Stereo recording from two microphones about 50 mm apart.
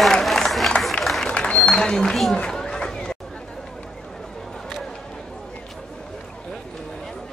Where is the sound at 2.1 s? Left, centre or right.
Centre.